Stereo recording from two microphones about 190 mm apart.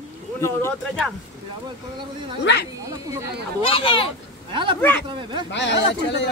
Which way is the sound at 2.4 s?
65° left (ahead or behind).